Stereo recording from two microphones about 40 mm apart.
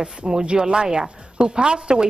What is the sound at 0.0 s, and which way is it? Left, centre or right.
A woman's voice, right.